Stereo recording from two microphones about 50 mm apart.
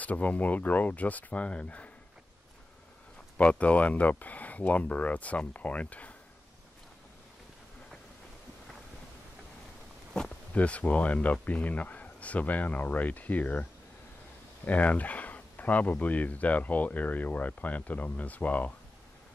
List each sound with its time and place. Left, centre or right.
0.0 s speech: left
3.3 s speech: left
10.5 s speech: left